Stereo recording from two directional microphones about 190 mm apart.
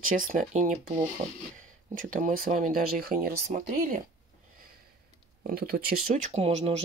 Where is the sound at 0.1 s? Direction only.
45° right (ahead or behind).